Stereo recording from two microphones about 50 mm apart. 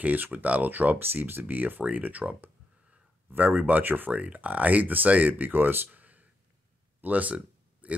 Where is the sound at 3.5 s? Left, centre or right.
Right.